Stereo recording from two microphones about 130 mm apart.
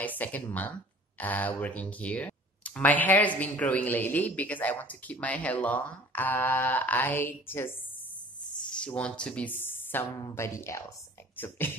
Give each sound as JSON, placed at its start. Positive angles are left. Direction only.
{"t": 0.0, "sound": "speech", "side_deg": 10}
{"t": 8.7, "sound": "speech", "side_deg": 10}